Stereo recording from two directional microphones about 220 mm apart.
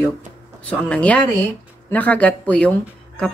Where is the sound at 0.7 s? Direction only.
5° left (ahead or behind).